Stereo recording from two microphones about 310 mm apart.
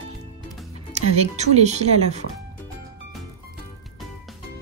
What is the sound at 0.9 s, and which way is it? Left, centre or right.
Speech, right.